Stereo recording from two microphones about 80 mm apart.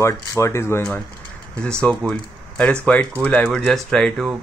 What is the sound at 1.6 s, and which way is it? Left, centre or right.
Speech, centre.